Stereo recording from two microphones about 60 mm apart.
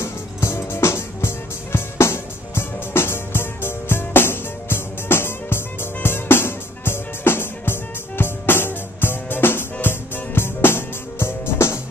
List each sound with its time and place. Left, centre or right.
0.0 s music: left